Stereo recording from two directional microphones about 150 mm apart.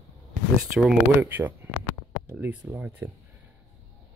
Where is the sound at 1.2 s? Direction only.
10° right (ahead or behind).